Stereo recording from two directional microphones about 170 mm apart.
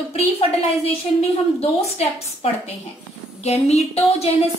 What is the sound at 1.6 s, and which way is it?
A woman's voice, 35° left (ahead or behind).